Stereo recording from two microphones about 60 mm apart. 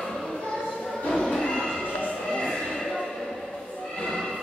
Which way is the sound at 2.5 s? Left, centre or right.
Centre.